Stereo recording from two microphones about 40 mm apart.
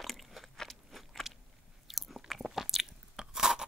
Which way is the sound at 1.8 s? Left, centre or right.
Centre.